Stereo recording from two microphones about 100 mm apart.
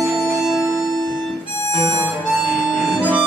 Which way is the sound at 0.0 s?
10° right (ahead or behind).